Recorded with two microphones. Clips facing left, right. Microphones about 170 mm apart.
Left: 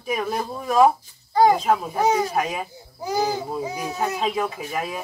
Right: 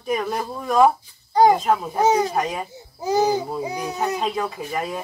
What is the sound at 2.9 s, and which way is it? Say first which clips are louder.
Speech: right 4 dB; 20° right (ahead or behind).